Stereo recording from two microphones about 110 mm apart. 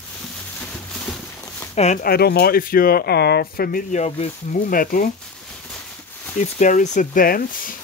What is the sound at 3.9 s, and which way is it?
Speech, 80° left.